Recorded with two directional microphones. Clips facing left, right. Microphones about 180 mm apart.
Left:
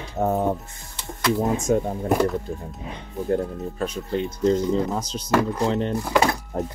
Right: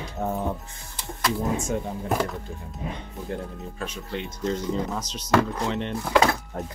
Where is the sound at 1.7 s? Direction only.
50° left (ahead or behind).